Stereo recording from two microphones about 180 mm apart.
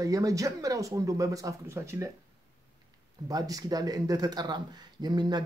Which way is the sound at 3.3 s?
20° right (ahead or behind).